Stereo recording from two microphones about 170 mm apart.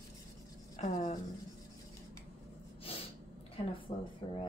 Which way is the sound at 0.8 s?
45° left (ahead or behind).